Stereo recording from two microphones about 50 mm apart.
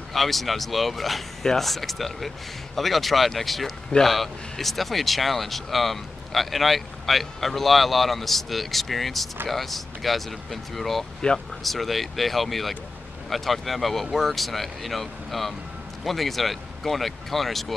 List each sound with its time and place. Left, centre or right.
0.1 s speech: centre
11.1 s speech: centre
11.6 s speech: centre